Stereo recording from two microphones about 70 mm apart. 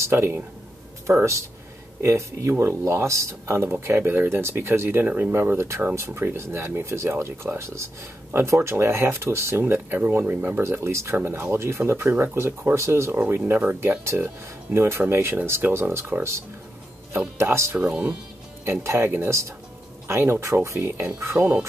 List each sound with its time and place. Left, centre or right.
0.0 s speech: right
2.0 s speech: right
11.1 s speech: right
13.1 s speech: right
17.7 s speech: centre
18.7 s speech: right